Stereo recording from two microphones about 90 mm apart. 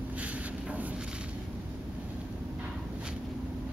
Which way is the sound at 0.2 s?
15° right (ahead or behind).